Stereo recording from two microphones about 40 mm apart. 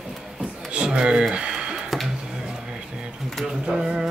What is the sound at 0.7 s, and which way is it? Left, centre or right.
Speech, right.